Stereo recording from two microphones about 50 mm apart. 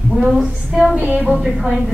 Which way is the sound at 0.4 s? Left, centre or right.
Centre.